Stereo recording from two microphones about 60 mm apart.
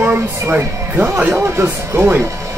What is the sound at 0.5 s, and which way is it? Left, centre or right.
Speech, right.